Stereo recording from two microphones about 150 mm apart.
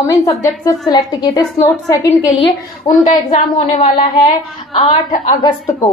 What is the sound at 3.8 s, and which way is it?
Speech, 40° left (ahead or behind).